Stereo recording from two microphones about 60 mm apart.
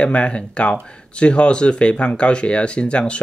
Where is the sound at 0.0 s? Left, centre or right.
Centre.